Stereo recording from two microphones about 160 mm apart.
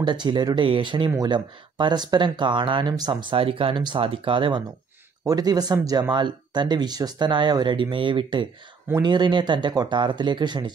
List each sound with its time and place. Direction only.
0.0 s speech: 30° right (ahead or behind)